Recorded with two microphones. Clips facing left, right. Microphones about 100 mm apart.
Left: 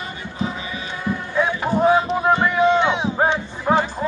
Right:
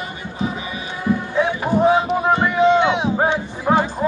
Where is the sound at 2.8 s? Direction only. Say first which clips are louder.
Right 2 dB; 5° right (ahead or behind).